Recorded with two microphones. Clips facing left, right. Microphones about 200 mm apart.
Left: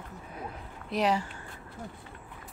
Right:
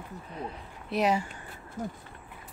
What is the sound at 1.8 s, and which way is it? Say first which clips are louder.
Speech: right 8 dB; 45° right (ahead or behind).